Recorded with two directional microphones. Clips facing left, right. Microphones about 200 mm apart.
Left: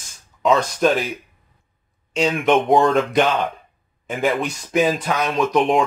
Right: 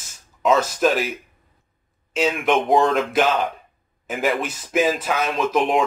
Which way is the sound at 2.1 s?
Centre (ahead or behind).